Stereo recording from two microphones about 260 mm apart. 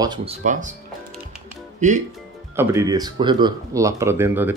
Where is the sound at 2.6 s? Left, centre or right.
Centre.